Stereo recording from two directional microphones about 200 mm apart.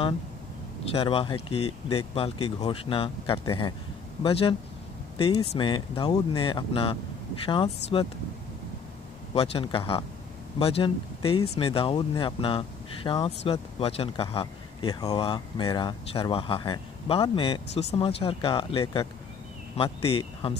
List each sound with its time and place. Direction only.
0.9 s speech: 25° left (ahead or behind)
9.3 s speech: 30° left (ahead or behind)